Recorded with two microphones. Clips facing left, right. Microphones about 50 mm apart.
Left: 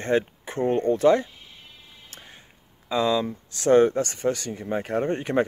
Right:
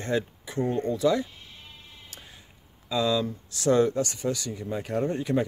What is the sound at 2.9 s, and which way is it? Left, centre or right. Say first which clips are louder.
Speech: left 2 dB; left.